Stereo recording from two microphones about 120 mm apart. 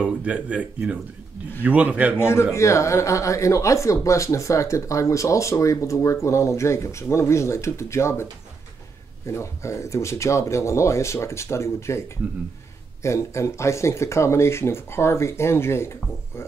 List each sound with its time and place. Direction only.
0.0 s speech: 10° right (ahead or behind)
2.1 s speech: 20° left (ahead or behind)
13.0 s speech: 25° left (ahead or behind)